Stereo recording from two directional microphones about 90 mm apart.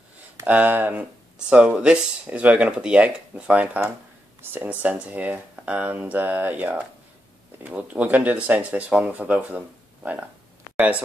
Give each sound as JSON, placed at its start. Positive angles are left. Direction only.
{"t": 0.5, "sound": "speech", "side_deg": -20}